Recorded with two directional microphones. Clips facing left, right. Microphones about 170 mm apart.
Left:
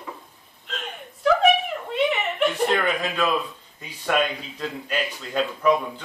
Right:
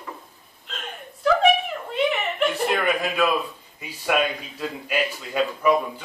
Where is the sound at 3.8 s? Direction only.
10° right (ahead or behind).